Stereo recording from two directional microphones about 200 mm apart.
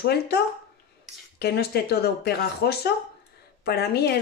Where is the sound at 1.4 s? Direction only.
55° left (ahead or behind).